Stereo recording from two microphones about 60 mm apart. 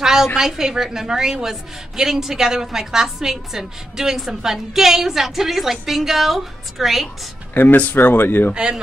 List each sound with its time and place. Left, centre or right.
0.0 s a sound: centre
0.4 s a woman's voice: centre
7.5 s speech: left
8.5 s a woman's voice: centre